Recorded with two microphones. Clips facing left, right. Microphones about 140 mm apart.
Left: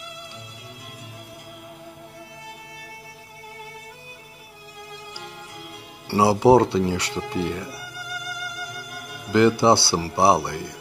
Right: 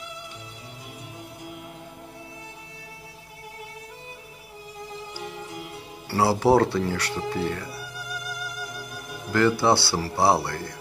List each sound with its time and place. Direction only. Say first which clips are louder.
6.0 s speech: left 4 dB; 20° left (ahead or behind)
9.3 s speech: left 4 dB; 20° left (ahead or behind)